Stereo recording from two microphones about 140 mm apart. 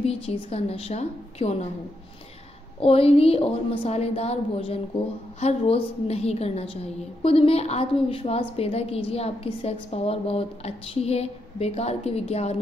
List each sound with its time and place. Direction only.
0.0 s a woman's voice: 45° left (ahead or behind)
2.8 s a woman's voice: 45° left (ahead or behind)